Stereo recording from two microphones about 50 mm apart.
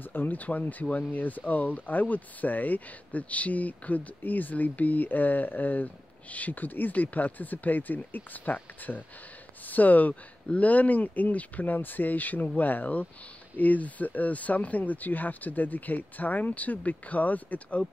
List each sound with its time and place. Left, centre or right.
0.0 s speech: left